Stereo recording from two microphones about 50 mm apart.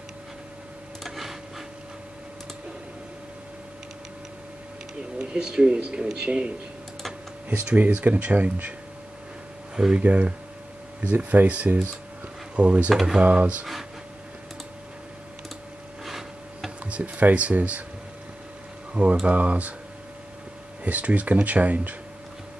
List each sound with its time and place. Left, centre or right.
1.0 s a sound: centre
5.2 s speech: centre
7.6 s speech: right
9.8 s speech: centre
16.1 s filing: centre
16.8 s speech: right
19.2 s speech: right
20.8 s speech: right